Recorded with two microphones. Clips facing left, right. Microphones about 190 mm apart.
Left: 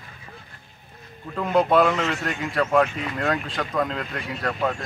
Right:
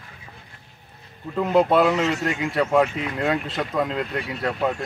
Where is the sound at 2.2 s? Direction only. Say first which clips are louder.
Right 2 dB; 20° right (ahead or behind).